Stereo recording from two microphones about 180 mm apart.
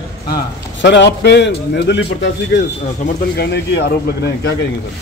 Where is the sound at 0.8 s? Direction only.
70° left (ahead or behind).